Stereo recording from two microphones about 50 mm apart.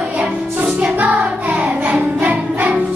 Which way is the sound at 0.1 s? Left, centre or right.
Right.